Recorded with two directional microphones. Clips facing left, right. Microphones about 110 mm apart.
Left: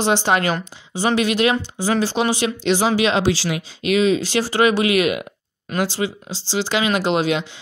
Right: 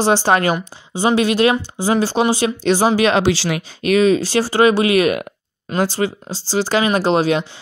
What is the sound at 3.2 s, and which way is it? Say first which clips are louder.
Speech: right 2 dB; 75° right (ahead or behind).